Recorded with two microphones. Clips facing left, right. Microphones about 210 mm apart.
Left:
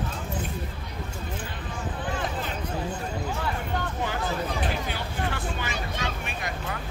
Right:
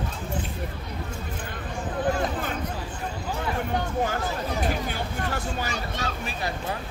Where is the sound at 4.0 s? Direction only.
45° right (ahead or behind).